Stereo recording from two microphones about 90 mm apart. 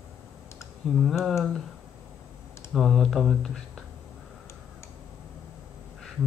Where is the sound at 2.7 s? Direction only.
Centre (ahead or behind).